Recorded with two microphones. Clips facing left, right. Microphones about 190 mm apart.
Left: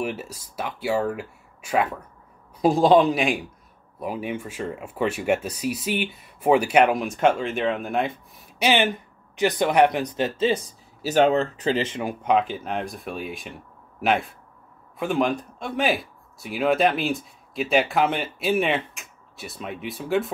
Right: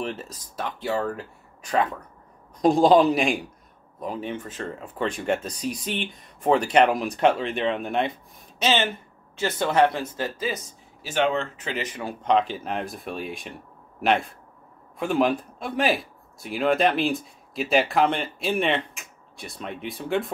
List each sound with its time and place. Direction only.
0.0 s speech: 10° left (ahead or behind)
8.5 s speech: 15° left (ahead or behind)
11.0 s speech: 40° left (ahead or behind)
12.0 s speech: 10° left (ahead or behind)